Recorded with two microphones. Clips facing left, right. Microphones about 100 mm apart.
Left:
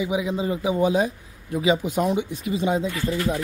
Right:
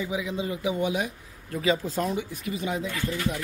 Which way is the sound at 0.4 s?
30° left (ahead or behind).